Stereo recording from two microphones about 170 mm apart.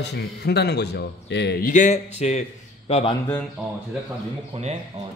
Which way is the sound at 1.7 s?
45° left (ahead or behind).